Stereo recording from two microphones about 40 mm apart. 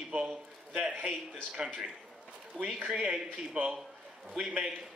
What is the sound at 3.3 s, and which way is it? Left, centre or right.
Speech, right.